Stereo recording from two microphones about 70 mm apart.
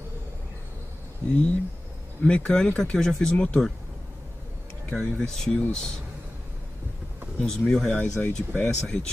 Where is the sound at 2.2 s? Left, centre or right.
Centre.